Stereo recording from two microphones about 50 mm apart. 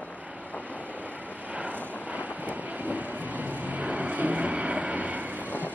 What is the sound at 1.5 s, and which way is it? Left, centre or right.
Vehicle, right.